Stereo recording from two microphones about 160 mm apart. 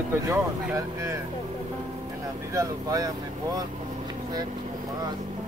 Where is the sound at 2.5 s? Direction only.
20° right (ahead or behind).